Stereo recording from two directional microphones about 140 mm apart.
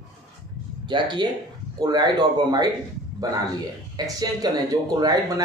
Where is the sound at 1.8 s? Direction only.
30° right (ahead or behind).